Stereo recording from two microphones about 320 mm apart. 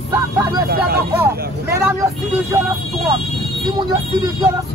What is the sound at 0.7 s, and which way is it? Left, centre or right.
Speech, right.